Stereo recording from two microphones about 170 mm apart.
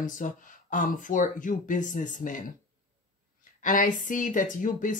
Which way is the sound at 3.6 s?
50° left (ahead or behind).